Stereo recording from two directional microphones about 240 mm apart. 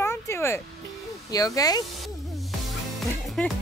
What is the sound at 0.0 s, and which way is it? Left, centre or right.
Music, centre.